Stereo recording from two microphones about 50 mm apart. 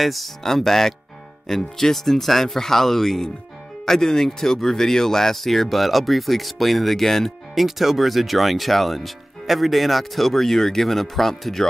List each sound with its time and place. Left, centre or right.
0.0 s speech: centre
7.6 s speech: centre